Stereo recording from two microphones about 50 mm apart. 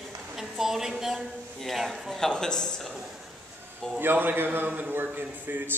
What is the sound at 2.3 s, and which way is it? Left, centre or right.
Speech, centre.